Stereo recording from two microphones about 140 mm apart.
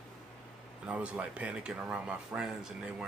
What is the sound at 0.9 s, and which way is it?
Speech, 10° right (ahead or behind).